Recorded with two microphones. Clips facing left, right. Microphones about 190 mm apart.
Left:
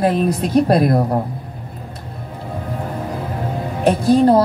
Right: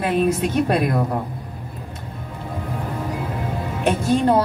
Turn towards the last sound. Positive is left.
turn(degrees=35)  # may be behind; listen again after turning